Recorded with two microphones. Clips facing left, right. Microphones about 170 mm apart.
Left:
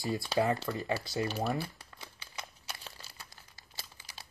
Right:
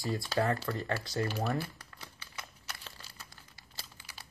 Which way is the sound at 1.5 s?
15° left (ahead or behind).